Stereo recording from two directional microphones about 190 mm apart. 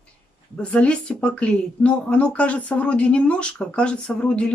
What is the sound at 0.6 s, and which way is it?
A woman's voice, 5° left (ahead or behind).